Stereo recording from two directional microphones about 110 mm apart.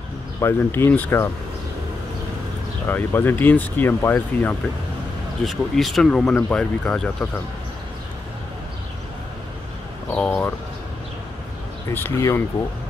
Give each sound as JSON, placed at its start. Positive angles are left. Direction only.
{"t": 0.4, "sound": "speech", "side_deg": 20}
{"t": 2.9, "sound": "speech", "side_deg": 20}
{"t": 5.4, "sound": "speech", "side_deg": 0}
{"t": 10.1, "sound": "speech", "side_deg": 10}
{"t": 11.9, "sound": "speech", "side_deg": 25}